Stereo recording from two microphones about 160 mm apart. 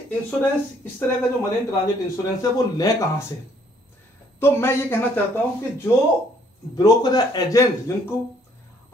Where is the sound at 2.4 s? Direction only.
20° left (ahead or behind).